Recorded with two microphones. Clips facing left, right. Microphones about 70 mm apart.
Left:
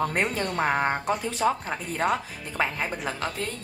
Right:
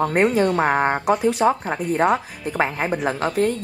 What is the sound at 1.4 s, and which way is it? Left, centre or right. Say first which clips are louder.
Speech: right 6 dB; right.